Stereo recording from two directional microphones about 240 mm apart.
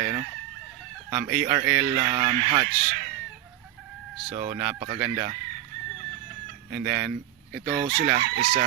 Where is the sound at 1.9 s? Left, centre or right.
Right.